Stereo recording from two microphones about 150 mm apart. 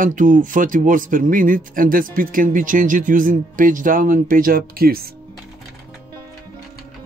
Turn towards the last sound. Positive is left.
turn(degrees=-90)